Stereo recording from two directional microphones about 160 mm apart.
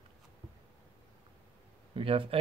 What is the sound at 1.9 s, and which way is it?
Speech, 35° right (ahead or behind).